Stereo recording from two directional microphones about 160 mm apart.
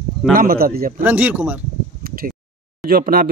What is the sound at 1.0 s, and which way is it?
Speech, 10° right (ahead or behind).